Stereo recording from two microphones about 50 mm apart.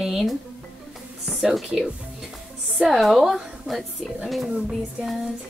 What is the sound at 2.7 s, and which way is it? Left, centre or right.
Speech, centre.